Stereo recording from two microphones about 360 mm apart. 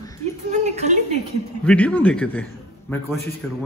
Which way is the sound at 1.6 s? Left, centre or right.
Centre.